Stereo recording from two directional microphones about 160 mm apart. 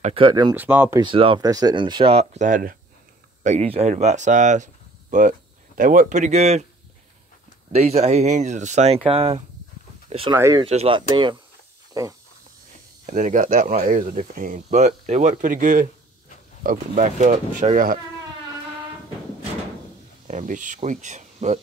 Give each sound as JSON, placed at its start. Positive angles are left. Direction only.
{"t": 0.0, "sound": "speech", "side_deg": -35}
{"t": 0.6, "sound": "speech", "side_deg": -10}
{"t": 1.0, "sound": "speech", "side_deg": -35}
{"t": 3.4, "sound": "speech", "side_deg": -40}
{"t": 5.8, "sound": "speech", "side_deg": -60}
{"t": 7.7, "sound": "speech", "side_deg": -40}
{"t": 10.0, "sound": "a sound", "side_deg": -35}
{"t": 10.3, "sound": "speech", "side_deg": -20}
{"t": 10.6, "sound": "speech", "side_deg": -35}
{"t": 11.9, "sound": "speech", "side_deg": -20}
{"t": 13.0, "sound": "speech", "side_deg": -55}
{"t": 20.2, "sound": "speech", "side_deg": -50}